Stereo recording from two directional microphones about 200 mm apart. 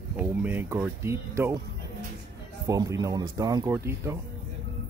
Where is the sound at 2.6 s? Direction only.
15° right (ahead or behind).